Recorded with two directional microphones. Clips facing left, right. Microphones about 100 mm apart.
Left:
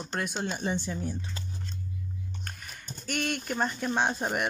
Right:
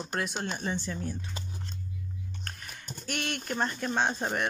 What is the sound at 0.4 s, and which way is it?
Speech, 15° left (ahead or behind).